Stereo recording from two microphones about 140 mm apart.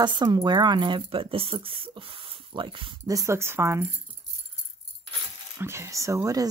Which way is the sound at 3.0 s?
20° right (ahead or behind).